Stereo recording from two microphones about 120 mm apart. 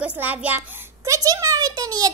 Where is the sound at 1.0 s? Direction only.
25° right (ahead or behind).